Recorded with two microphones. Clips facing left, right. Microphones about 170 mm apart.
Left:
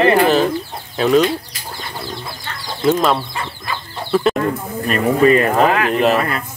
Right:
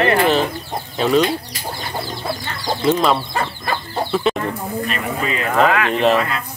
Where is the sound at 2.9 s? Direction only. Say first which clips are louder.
Left 1 dB; centre (ahead or behind).